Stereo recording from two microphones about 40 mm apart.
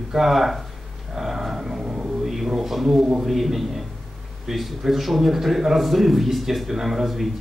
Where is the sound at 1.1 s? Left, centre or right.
Centre.